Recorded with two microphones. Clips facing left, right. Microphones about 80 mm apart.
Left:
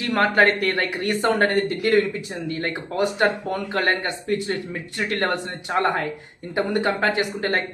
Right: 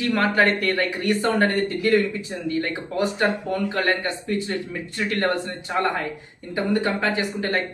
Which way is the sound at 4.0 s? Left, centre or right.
Left.